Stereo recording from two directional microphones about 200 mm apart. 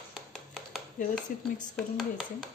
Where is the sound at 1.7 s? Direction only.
Centre (ahead or behind).